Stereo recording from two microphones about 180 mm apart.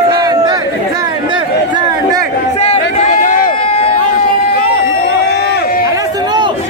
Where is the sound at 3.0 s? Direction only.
40° left (ahead or behind).